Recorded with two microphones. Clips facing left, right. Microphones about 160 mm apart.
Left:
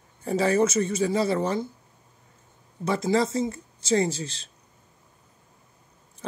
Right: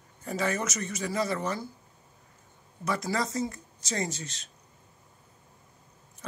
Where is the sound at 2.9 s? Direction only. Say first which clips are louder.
Left 7 dB; 25° left (ahead or behind).